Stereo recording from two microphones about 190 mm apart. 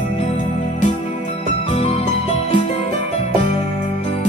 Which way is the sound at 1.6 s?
30° left (ahead or behind).